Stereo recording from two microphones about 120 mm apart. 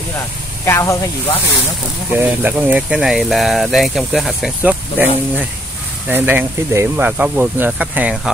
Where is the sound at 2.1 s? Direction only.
15° right (ahead or behind).